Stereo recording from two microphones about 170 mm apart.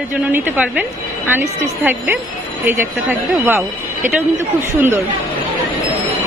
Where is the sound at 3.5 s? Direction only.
15° right (ahead or behind).